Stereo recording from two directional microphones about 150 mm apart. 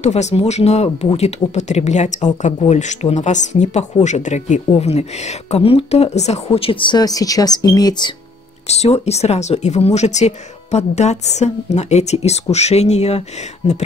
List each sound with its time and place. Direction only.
0.0 s speech: 45° left (ahead or behind); by 8.1 s 25° left (ahead or behind)
8.6 s speech: 45° left (ahead or behind)